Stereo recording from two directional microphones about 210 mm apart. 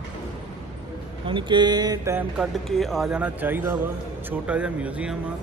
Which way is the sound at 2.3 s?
Centre (ahead or behind).